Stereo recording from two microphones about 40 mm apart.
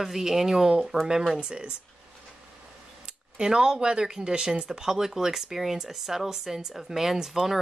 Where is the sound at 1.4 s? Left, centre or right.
Right.